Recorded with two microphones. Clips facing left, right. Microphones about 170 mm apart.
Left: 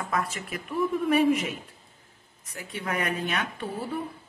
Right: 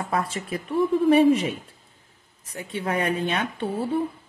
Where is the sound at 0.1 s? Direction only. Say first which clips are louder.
Right 3 dB; 30° right (ahead or behind).